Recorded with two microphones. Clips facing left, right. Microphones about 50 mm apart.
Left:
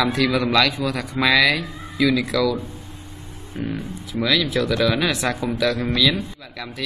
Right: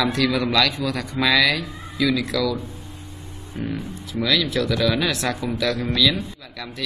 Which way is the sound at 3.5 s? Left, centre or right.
Left.